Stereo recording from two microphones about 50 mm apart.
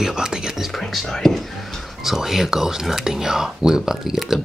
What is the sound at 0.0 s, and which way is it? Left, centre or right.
Whispering, centre.